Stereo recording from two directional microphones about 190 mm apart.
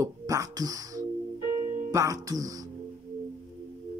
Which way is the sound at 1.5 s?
40° right (ahead or behind).